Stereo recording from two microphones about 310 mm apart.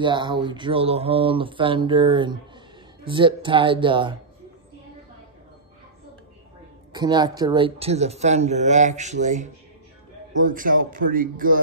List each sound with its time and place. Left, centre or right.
0.0 s speech: centre
6.9 s speech: centre